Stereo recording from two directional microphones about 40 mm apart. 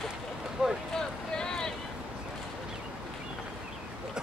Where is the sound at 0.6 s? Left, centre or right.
Centre.